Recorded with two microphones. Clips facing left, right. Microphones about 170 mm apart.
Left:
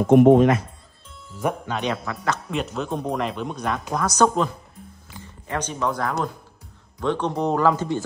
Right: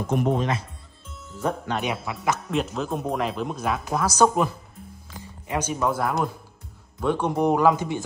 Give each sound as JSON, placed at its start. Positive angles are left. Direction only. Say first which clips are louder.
{"t": 0.0, "sound": "speech", "louder": "left 10 dB", "side_deg": 65}
{"t": 1.7, "sound": "a man's voice", "louder": "left 1 dB", "side_deg": -10}
{"t": 2.5, "sound": "a man's voice", "louder": "even", "side_deg": 0}